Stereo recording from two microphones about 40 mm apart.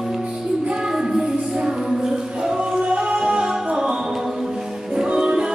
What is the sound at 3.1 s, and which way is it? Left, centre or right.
Music, right.